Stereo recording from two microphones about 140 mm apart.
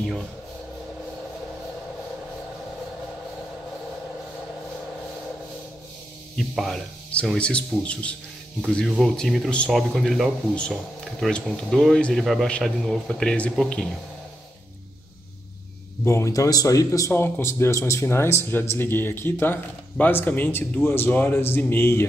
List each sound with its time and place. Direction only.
6.3 s speech: centre (ahead or behind)
16.0 s speech: 20° left (ahead or behind)